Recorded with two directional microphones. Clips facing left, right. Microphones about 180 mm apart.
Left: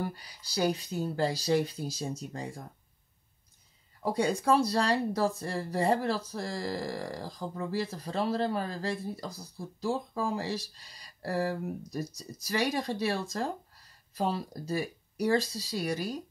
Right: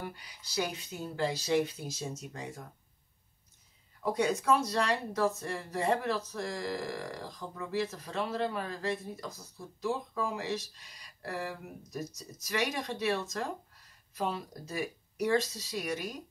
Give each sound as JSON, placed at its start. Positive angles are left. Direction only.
{"t": 0.0, "sound": "speech", "side_deg": 35}
{"t": 4.0, "sound": "speech", "side_deg": 30}